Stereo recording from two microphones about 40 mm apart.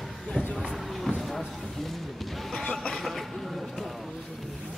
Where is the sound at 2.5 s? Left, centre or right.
Left.